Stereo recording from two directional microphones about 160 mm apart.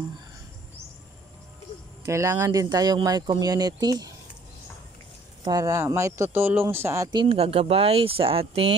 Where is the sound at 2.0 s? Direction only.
20° right (ahead or behind).